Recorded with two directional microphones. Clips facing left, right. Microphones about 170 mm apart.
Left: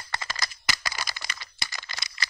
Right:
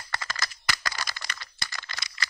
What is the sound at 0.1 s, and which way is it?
Computer keyboard, 20° left (ahead or behind).